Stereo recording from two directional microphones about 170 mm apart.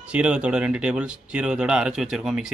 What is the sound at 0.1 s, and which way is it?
Speech, 5° right (ahead or behind).